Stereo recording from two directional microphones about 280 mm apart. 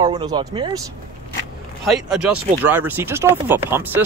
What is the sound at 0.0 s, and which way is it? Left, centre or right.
Speech, centre.